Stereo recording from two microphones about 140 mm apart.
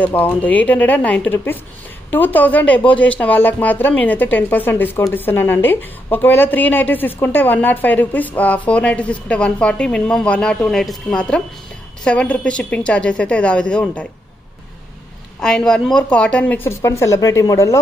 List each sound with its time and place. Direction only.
0.0 s speech: 10° left (ahead or behind)
15.4 s speech: 5° left (ahead or behind); by 17.7 s 20° left (ahead or behind)